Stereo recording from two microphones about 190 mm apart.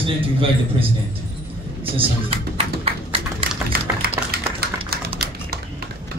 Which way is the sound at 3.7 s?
55° right (ahead or behind).